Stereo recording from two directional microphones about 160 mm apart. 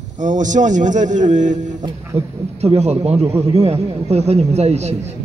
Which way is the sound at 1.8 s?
40° right (ahead or behind).